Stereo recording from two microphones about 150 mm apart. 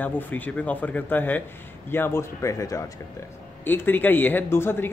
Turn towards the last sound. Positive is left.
turn(degrees=15)  # may be behind; listen again after turning